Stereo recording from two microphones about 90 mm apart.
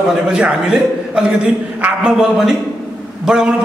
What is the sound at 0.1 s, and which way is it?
A man's voice, 10° right (ahead or behind).